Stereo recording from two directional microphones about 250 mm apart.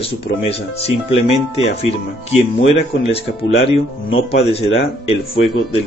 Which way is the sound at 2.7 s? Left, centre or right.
Left.